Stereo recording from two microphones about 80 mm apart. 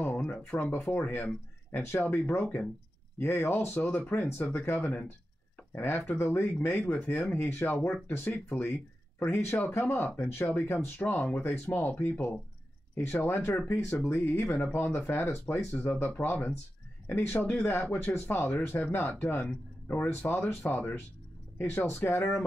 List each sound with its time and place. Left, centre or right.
0.0 s a sound: left
0.8 s speech: left
8.3 s speech: centre
9.2 s speech: left